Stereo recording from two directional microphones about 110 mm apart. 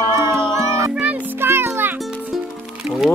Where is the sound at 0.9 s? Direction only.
15° right (ahead or behind).